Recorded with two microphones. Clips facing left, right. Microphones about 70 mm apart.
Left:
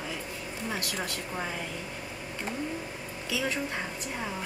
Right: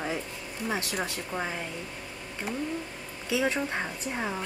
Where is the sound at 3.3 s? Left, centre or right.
Right.